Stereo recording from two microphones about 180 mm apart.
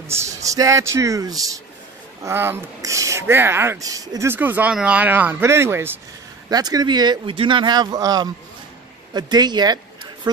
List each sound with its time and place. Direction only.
0.1 s speech: 15° right (ahead or behind)